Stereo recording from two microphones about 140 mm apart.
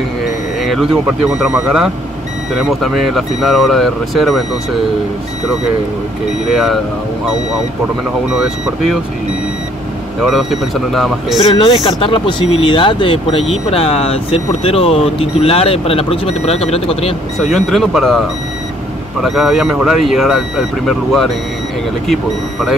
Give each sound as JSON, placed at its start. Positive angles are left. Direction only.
{"t": 0.6, "sound": "speech", "side_deg": 0}
{"t": 6.5, "sound": "speech", "side_deg": 0}
{"t": 10.2, "sound": "speech", "side_deg": 0}
{"t": 11.4, "sound": "speech", "side_deg": 40}
{"t": 17.4, "sound": "speech", "side_deg": 0}
{"t": 19.2, "sound": "speech", "side_deg": 0}